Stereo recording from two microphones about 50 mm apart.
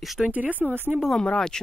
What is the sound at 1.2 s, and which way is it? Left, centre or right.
Speech, centre.